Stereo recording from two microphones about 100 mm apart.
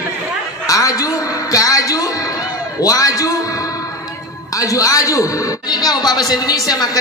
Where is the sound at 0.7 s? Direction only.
35° left (ahead or behind).